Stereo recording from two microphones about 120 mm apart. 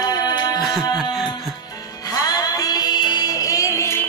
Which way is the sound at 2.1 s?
30° left (ahead or behind).